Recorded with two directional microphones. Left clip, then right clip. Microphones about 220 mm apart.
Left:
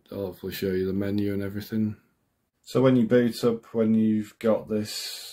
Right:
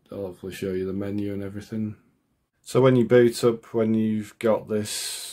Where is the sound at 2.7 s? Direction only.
30° right (ahead or behind).